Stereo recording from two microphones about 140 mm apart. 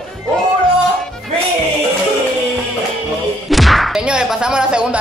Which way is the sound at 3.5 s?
Centre (ahead or behind).